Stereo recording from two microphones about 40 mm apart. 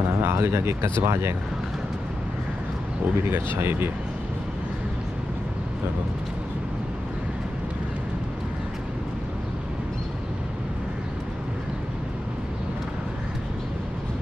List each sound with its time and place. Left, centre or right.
0.2 s speech: right
3.3 s speech: right